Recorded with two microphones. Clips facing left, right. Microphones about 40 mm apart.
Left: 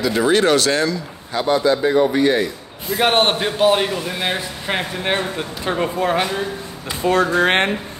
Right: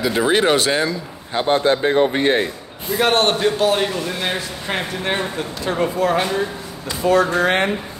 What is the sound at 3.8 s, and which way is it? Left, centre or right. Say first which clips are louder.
A man's voice: even; centre.